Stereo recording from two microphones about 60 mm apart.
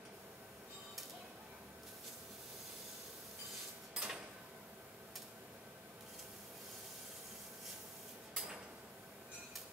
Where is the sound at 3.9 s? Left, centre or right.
Centre.